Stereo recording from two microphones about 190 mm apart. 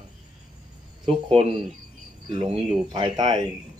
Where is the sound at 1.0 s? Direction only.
30° right (ahead or behind).